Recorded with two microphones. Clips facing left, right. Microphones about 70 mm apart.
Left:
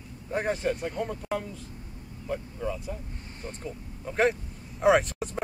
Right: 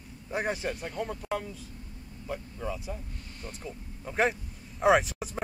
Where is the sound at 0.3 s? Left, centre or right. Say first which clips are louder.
Left 3 dB; centre.